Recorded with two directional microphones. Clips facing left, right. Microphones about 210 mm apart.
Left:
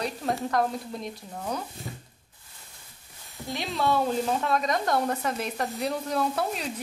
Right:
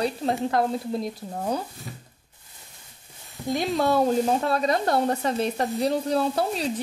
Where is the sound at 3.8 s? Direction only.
40° right (ahead or behind).